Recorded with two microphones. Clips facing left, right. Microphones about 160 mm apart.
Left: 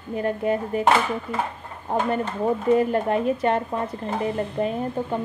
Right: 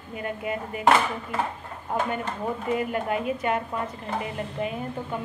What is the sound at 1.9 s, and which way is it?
A woman's voice, 30° left (ahead or behind).